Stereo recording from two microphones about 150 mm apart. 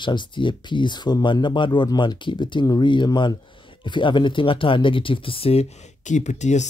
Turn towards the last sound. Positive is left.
turn(degrees=50)  # may be behind; listen again after turning